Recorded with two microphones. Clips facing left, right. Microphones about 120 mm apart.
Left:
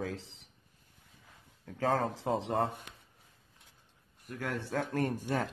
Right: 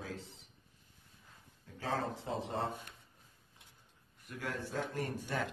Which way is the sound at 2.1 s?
90° left.